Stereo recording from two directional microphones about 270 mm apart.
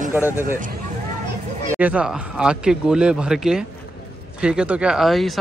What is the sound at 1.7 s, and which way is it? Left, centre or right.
Speech, centre.